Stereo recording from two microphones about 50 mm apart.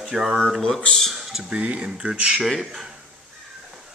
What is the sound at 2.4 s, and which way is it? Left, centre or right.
Speech, centre.